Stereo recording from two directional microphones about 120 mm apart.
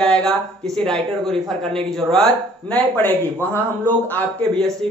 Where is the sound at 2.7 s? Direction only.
15° left (ahead or behind).